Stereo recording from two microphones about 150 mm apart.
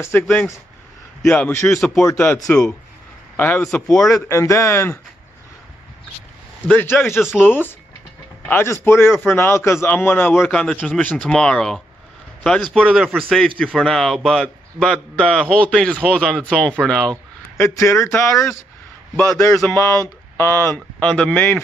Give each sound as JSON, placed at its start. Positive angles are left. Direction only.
{"t": 0.0, "sound": "a man's voice", "side_deg": 10}
{"t": 4.3, "sound": "a man's voice", "side_deg": 20}
{"t": 6.7, "sound": "a man's voice", "side_deg": 10}
{"t": 7.2, "sound": "speech", "side_deg": -5}
{"t": 7.4, "sound": "a man's voice", "side_deg": 10}
{"t": 17.6, "sound": "a man's voice", "side_deg": 20}